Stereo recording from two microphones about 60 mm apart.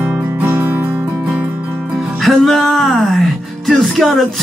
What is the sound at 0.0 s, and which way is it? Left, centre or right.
Music, right.